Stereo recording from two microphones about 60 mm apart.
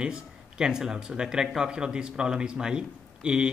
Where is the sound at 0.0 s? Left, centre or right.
Centre.